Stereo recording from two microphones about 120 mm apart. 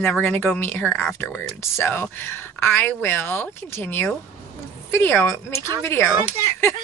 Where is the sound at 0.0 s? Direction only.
15° left (ahead or behind).